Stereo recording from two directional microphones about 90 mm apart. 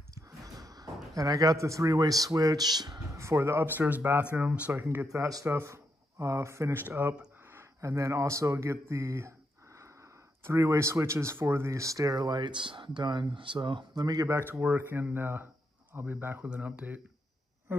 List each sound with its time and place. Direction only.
0.1 s a sound: 40° right (ahead or behind)
1.1 s speech: 40° right (ahead or behind)
3.2 s speech: 30° right (ahead or behind)
5.0 s speech: 40° right (ahead or behind)
10.4 s speech: 35° right (ahead or behind)
14.4 s speech: 20° right (ahead or behind)
17.7 s a sound: 25° right (ahead or behind)